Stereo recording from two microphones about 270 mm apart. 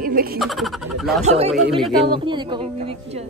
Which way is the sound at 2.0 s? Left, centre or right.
Centre.